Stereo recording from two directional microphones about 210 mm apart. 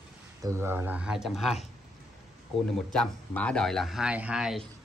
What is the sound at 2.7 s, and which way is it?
Speech, 5° left (ahead or behind).